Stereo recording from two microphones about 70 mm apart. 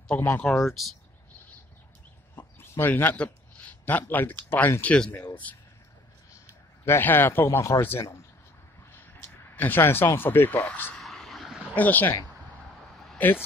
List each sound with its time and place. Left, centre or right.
0.1 s speech: left
0.5 s speech: centre
2.6 s chicken: left
2.9 s speech: left
4.8 s speech: centre
6.8 s speech: left
11.0 s a sound: centre
11.7 s speech: left
12.9 s a sound: centre